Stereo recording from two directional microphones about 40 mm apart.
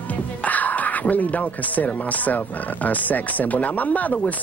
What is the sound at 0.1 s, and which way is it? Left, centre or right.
Speech, left.